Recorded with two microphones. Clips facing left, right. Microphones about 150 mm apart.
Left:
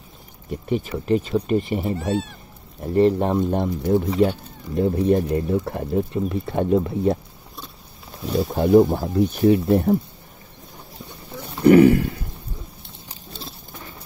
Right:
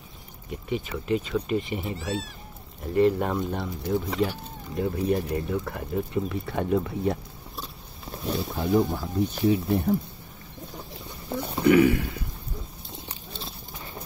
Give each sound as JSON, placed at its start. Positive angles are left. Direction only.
{"t": 0.5, "sound": "speech", "side_deg": 45}
{"t": 2.8, "sound": "speech", "side_deg": 35}
{"t": 3.5, "sound": "speech", "side_deg": 50}
{"t": 4.7, "sound": "speech", "side_deg": 35}
{"t": 8.4, "sound": "speech", "side_deg": 50}
{"t": 11.6, "sound": "speech", "side_deg": 40}